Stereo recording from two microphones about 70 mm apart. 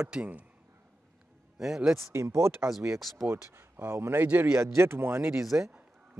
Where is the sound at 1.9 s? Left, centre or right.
Right.